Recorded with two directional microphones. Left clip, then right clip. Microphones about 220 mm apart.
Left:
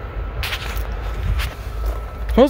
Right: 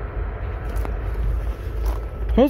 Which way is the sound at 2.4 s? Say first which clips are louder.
Left 4 dB; 20° left (ahead or behind).